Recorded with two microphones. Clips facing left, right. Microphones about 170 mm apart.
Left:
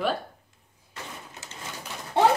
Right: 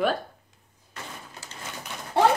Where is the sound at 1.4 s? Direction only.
20° left (ahead or behind).